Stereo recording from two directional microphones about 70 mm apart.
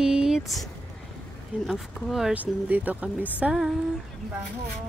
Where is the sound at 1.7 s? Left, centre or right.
Centre.